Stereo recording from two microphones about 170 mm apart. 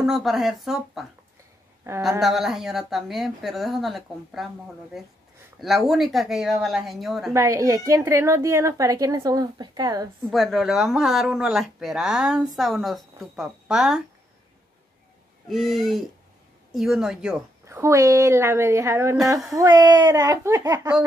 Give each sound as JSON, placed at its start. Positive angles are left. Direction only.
{"t": 0.0, "sound": "speech", "side_deg": 0}
{"t": 2.0, "sound": "speech", "side_deg": 0}
{"t": 7.3, "sound": "speech", "side_deg": -20}
{"t": 10.3, "sound": "speech", "side_deg": 0}
{"t": 15.4, "sound": "speech", "side_deg": 0}
{"t": 17.6, "sound": "a woman's voice", "side_deg": -15}